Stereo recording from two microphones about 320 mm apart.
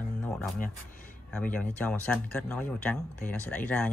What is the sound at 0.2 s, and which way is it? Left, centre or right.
Music, centre.